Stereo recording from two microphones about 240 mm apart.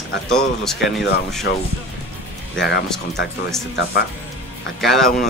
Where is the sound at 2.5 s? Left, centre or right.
Left.